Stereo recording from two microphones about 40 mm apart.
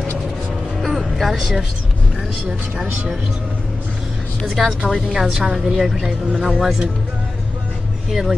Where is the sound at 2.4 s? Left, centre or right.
Right.